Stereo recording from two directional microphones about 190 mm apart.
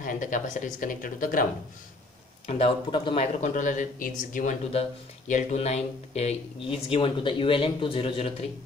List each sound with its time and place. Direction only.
0.0 s speech: 45° left (ahead or behind)
2.4 s speech: 35° left (ahead or behind)
3.3 s speech: 40° left (ahead or behind)